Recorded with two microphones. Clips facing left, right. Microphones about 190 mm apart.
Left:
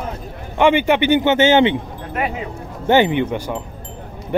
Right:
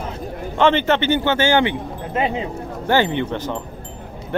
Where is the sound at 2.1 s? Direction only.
25° right (ahead or behind).